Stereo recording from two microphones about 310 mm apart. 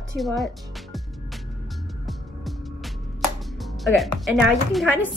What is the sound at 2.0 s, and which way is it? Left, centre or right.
Music, centre.